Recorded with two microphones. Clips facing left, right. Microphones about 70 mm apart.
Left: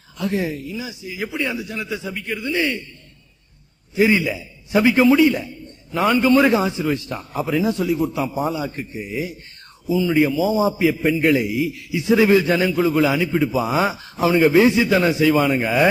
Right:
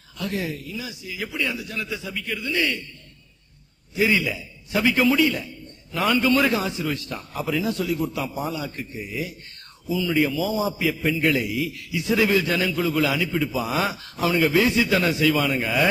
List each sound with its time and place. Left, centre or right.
0.2 s a man's voice: left
3.9 s a man's voice: left